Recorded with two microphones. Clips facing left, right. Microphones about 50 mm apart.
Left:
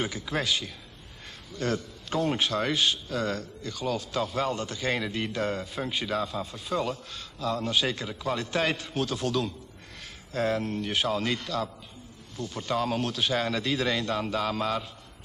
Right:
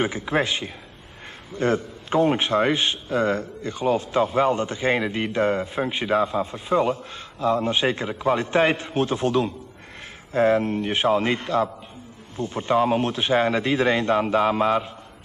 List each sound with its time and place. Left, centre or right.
0.0 s a man's voice: right